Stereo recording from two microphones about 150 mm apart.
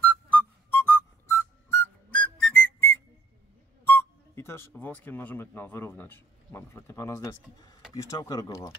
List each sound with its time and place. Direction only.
0.0 s whistle: 10° left (ahead or behind)
3.8 s speech: 15° left (ahead or behind)